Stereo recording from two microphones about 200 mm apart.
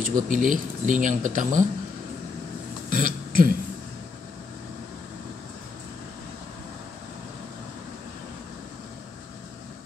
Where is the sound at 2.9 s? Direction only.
45° right (ahead or behind).